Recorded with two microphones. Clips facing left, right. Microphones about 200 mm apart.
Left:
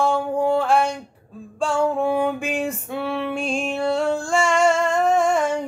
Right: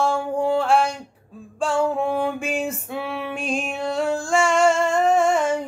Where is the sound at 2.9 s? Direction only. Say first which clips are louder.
Left 3 dB; centre (ahead or behind).